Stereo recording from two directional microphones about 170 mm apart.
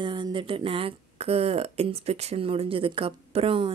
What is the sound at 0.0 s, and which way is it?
Speech, 30° right (ahead or behind).